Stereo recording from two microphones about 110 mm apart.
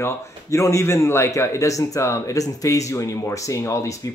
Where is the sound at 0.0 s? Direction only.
25° left (ahead or behind).